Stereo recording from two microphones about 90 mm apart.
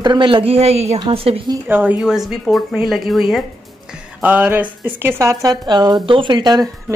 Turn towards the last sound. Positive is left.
turn(degrees=-55)  # may be behind; listen again after turning